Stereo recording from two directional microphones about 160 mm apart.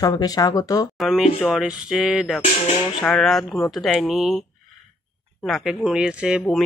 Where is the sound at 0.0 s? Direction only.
25° left (ahead or behind).